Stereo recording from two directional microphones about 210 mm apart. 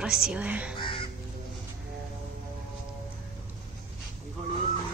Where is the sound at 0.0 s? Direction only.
5° right (ahead or behind).